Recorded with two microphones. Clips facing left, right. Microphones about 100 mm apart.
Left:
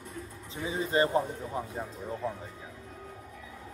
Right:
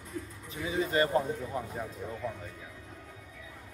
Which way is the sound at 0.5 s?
30° left (ahead or behind).